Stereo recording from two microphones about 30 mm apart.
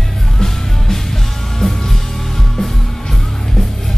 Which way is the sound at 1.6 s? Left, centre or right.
Centre.